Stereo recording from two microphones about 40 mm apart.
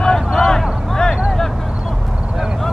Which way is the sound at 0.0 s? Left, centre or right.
Centre.